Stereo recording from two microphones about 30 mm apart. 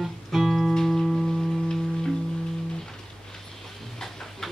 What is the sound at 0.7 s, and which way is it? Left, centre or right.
Music, centre.